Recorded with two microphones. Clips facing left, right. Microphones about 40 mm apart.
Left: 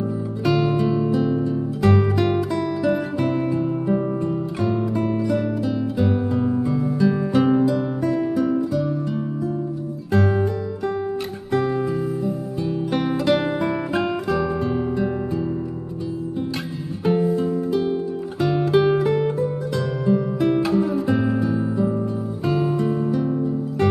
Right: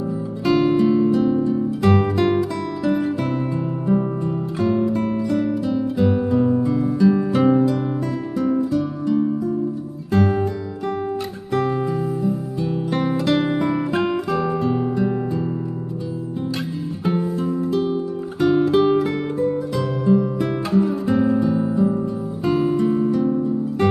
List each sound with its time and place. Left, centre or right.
0.6 s music: centre
10.1 s music: centre
11.5 s music: centre
17.1 s music: centre